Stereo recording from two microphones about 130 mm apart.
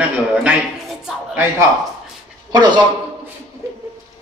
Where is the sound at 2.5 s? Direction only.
35° right (ahead or behind).